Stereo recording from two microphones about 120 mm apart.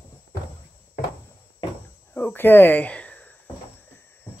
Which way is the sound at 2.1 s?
15° left (ahead or behind).